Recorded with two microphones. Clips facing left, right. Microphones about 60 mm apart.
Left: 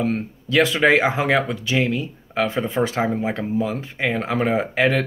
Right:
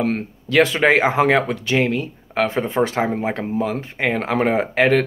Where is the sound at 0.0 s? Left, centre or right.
Right.